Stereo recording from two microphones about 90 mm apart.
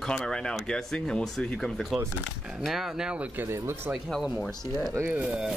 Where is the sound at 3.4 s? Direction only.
25° right (ahead or behind).